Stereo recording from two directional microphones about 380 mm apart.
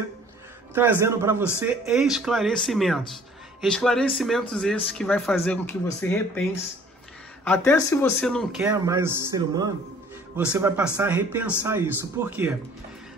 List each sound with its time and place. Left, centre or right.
0.7 s a man's voice: centre
7.4 s a man's voice: centre